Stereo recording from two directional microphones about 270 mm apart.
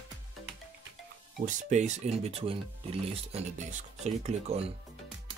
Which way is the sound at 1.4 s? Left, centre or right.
Right.